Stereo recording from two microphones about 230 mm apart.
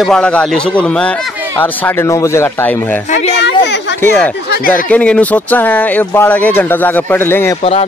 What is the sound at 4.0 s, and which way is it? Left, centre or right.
Speech, centre.